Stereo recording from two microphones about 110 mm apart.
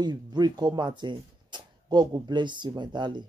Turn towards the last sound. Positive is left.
turn(degrees=-45)  # may be behind; listen again after turning